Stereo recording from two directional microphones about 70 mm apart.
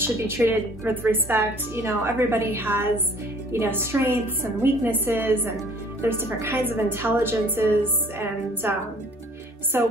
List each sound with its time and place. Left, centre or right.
0.0 s a woman's voice: right
9.7 s a woman's voice: right